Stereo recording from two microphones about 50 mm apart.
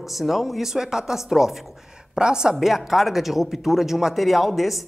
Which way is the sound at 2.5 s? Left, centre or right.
Centre.